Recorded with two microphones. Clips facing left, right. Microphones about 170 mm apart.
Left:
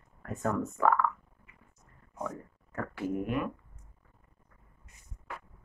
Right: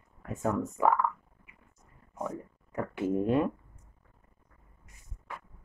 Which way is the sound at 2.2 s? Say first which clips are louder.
Right 2 dB; 20° right (ahead or behind).